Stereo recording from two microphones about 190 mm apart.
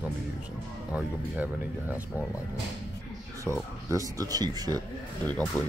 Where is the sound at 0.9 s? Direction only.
10° right (ahead or behind).